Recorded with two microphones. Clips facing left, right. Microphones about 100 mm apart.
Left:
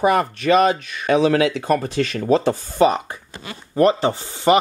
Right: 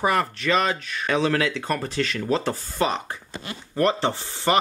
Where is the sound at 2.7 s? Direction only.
15° left (ahead or behind).